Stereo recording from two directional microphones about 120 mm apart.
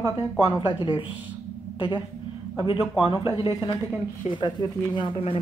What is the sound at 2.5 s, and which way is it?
A man's voice, 45° left (ahead or behind).